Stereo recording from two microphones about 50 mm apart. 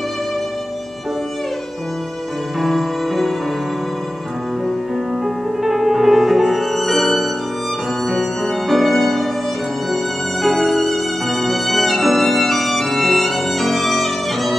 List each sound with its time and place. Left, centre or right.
2.6 s music: centre
5.2 s music: centre
10.4 s violin: centre